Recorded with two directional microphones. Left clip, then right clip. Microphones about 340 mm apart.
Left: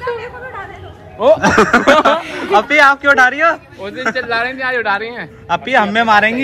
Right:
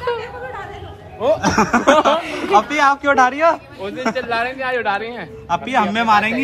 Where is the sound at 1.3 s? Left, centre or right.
Centre.